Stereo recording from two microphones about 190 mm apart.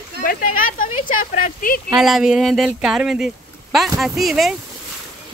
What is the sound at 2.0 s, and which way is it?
Speech, centre (ahead or behind).